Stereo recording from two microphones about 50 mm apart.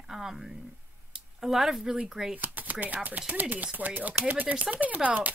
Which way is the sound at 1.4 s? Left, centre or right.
Centre.